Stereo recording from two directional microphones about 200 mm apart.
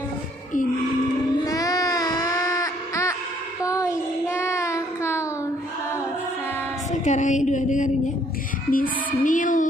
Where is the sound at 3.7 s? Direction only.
15° left (ahead or behind).